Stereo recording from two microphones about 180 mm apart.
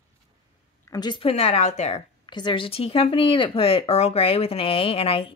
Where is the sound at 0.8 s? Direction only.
20° left (ahead or behind); by 2.0 s 40° left (ahead or behind).